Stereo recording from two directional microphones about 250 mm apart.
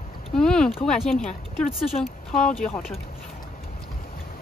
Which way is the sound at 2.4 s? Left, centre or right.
Centre.